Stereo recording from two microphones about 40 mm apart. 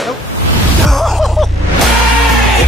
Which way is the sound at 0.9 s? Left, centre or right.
Centre.